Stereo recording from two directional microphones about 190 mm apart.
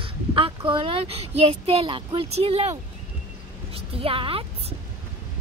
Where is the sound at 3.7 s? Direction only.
30° right (ahead or behind).